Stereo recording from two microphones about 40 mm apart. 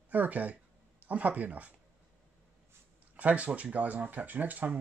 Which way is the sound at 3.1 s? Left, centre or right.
Right.